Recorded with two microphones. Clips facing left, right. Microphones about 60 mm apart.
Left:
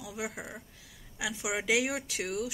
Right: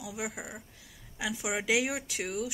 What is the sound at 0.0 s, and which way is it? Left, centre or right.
Speech, centre.